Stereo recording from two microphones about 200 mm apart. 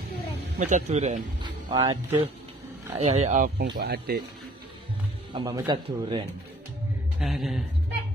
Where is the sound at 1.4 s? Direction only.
20° right (ahead or behind).